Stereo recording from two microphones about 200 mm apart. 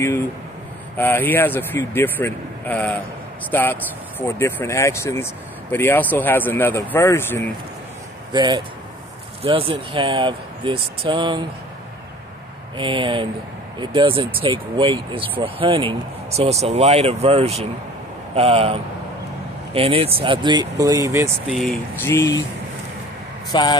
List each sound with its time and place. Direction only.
0.9 s speech: 10° left (ahead or behind)
8.3 s speech: 20° right (ahead or behind)
12.7 s speech: 25° right (ahead or behind)
21.5 s speech: centre (ahead or behind)
23.5 s speech: 20° left (ahead or behind)